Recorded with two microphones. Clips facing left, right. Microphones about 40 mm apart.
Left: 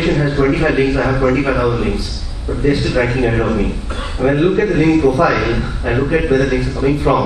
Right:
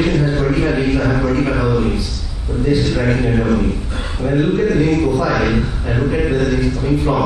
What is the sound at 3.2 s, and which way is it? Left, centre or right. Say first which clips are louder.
A man's voice: left 1 dB; left.